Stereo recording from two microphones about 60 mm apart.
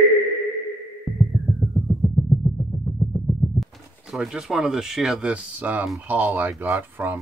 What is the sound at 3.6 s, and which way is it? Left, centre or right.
Speech, centre.